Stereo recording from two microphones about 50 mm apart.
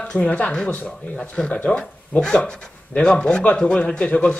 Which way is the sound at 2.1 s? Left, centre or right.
Centre.